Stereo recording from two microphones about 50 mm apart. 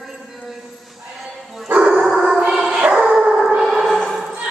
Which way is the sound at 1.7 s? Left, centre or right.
Right.